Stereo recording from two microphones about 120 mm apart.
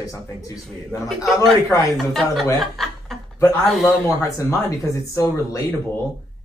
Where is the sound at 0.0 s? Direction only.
30° left (ahead or behind).